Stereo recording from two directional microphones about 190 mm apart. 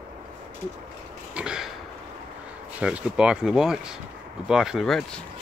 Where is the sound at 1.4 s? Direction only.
5° right (ahead or behind).